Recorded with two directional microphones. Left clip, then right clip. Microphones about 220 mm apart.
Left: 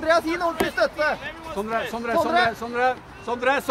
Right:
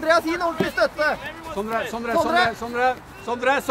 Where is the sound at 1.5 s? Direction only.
5° left (ahead or behind).